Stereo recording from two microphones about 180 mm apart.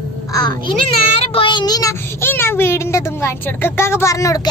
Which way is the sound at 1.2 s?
30° left (ahead or behind).